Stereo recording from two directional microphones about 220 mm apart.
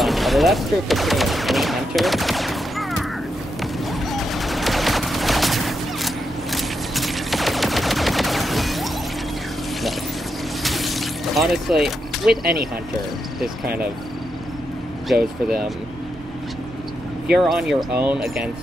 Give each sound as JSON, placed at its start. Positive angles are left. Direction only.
{"t": 0.0, "sound": "fusillade", "side_deg": 0}
{"t": 4.1, "sound": "fusillade", "side_deg": 0}
{"t": 10.6, "sound": "vehicle", "side_deg": 0}
{"t": 12.3, "sound": "speech", "side_deg": -45}
{"t": 17.3, "sound": "speech", "side_deg": -5}